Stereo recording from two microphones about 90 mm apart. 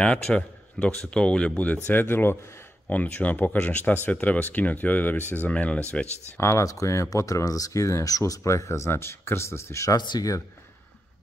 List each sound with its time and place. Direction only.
0.0 s speech: 10° left (ahead or behind)
6.4 s speech: 35° left (ahead or behind)
9.9 s speech: 50° left (ahead or behind)